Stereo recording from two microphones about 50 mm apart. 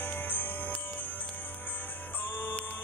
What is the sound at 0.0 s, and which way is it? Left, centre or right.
Music, left.